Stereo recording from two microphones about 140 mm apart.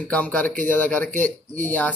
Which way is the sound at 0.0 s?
10° left (ahead or behind).